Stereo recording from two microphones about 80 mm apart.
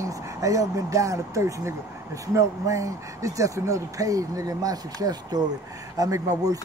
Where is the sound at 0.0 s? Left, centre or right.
Right.